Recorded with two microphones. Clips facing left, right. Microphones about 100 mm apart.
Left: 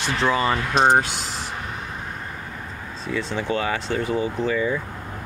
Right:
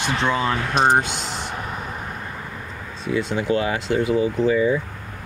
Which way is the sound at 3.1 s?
10° right (ahead or behind).